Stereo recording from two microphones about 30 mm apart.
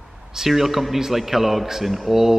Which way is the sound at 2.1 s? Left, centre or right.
Centre.